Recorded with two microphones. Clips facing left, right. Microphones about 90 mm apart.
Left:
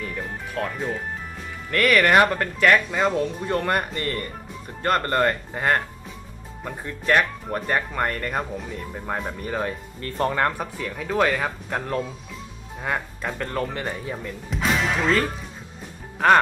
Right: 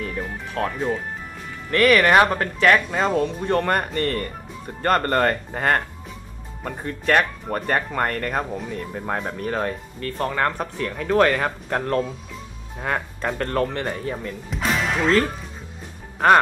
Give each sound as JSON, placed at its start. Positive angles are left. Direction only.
{"t": 0.7, "sound": "speech", "side_deg": 0}
{"t": 1.7, "sound": "speech", "side_deg": -35}
{"t": 2.1, "sound": "speech", "side_deg": -20}
{"t": 2.9, "sound": "speech", "side_deg": -5}
{"t": 9.9, "sound": "speech", "side_deg": 30}
{"t": 10.6, "sound": "speech", "side_deg": 5}